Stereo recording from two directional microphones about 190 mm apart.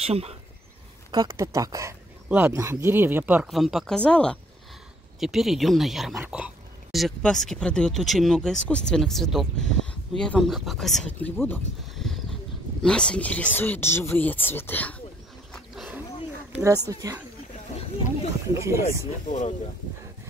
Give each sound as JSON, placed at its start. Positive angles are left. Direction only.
{"t": 0.0, "sound": "speech", "side_deg": -30}
{"t": 1.1, "sound": "speech", "side_deg": -20}
{"t": 11.9, "sound": "a sound", "side_deg": 0}
{"t": 12.8, "sound": "speech", "side_deg": 5}
{"t": 15.5, "sound": "roaring cats", "side_deg": 0}
{"t": 16.5, "sound": "speech", "side_deg": -15}
{"t": 18.5, "sound": "speech", "side_deg": -15}
{"t": 19.2, "sound": "speech", "side_deg": 40}